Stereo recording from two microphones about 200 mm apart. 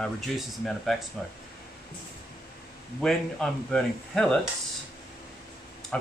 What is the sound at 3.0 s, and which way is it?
Speech, 5° left (ahead or behind).